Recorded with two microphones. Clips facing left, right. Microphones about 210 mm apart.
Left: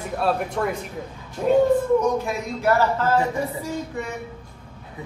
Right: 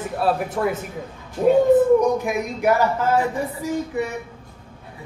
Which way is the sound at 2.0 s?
15° right (ahead or behind).